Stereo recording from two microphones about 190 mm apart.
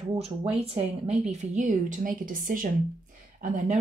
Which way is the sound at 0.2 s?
35° right (ahead or behind).